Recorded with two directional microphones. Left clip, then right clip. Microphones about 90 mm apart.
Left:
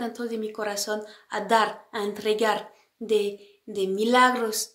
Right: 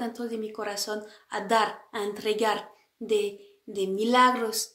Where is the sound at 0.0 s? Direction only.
25° left (ahead or behind).